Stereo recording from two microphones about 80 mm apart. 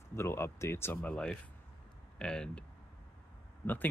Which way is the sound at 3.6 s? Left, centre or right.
Left.